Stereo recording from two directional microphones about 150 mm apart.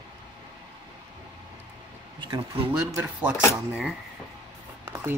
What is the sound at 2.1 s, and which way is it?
Speech, 30° right (ahead or behind).